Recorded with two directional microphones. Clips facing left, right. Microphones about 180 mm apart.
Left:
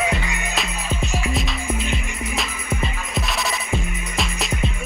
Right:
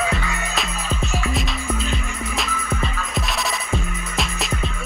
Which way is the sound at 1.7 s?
15° left (ahead or behind).